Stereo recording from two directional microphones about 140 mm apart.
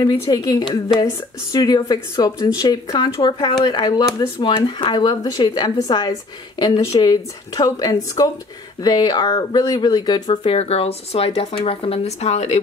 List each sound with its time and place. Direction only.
0.0 s a woman's voice: 30° left (ahead or behind); by 12.5 s 50° left (ahead or behind)